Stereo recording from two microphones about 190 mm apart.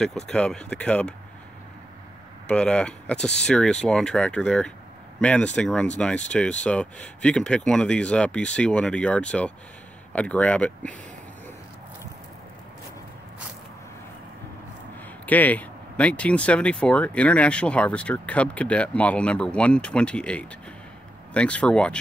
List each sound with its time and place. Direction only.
0.0 s speech: centre (ahead or behind)
2.4 s speech: 5° left (ahead or behind)
15.2 s speech: 10° left (ahead or behind)